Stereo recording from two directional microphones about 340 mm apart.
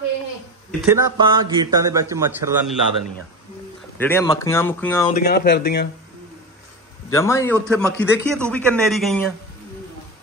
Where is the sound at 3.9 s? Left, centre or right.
Centre.